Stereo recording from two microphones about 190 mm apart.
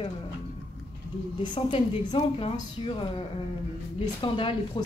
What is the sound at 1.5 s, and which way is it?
Speech, 25° left (ahead or behind).